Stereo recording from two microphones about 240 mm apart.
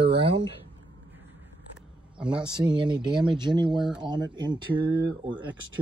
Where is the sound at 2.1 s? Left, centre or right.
Centre.